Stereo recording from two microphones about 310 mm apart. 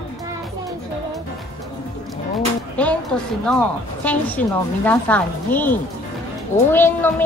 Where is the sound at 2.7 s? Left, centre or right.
Centre.